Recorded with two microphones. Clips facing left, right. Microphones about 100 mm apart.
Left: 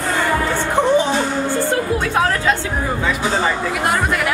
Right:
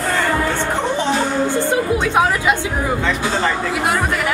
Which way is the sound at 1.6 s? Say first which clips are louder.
Right 1 dB; 15° right (ahead or behind).